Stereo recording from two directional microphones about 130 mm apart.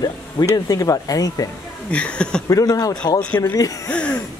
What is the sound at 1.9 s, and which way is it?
Speech, 10° left (ahead or behind).